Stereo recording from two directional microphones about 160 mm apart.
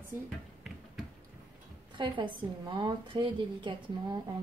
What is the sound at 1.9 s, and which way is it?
A woman's voice, 30° right (ahead or behind).